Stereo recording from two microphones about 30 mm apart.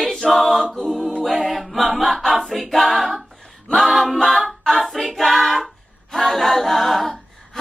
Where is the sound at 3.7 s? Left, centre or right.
Centre.